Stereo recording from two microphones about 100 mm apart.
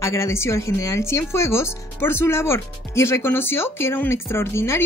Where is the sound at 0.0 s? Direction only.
30° left (ahead or behind).